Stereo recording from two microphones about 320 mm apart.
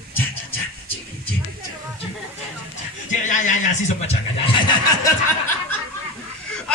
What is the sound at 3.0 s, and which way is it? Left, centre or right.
Speech, left.